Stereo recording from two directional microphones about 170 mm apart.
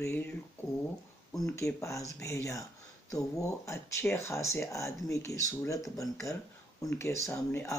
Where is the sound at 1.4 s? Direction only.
15° left (ahead or behind).